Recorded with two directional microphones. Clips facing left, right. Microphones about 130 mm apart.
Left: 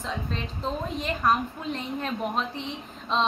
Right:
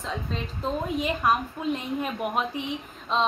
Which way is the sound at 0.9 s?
5° right (ahead or behind).